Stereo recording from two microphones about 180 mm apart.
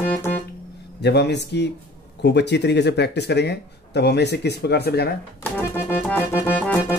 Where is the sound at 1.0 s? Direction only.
70° left (ahead or behind).